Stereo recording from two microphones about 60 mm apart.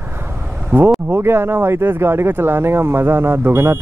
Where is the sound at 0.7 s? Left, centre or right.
Right.